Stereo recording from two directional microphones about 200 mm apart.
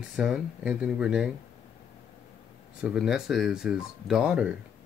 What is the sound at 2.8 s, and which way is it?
Speech, centre (ahead or behind).